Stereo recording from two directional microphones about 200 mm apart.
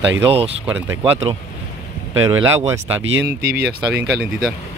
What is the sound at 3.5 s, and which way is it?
Speech, 50° right (ahead or behind).